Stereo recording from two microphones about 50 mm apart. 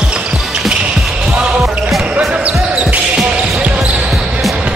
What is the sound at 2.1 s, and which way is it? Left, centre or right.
Basketball bounce, right.